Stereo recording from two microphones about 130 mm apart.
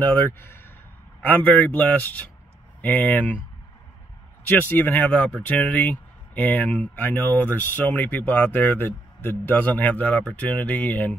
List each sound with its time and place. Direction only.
0.0 s speech: 15° left (ahead or behind)
4.5 s speech: 15° left (ahead or behind)